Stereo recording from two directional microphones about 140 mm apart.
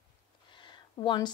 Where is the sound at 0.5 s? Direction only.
35° left (ahead or behind).